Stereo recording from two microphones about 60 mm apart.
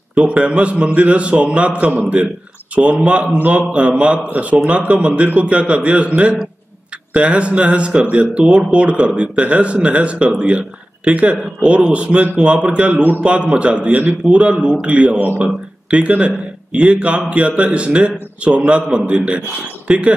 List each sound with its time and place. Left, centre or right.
0.1 s a man's voice: centre
14.3 s a man's voice: centre